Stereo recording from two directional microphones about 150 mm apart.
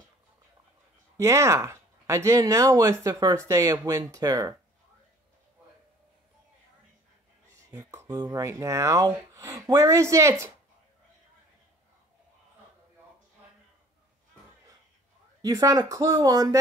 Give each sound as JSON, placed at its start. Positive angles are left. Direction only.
{"t": 1.1, "sound": "speech", "side_deg": -20}
{"t": 7.7, "sound": "speech", "side_deg": -20}
{"t": 15.4, "sound": "speech", "side_deg": -25}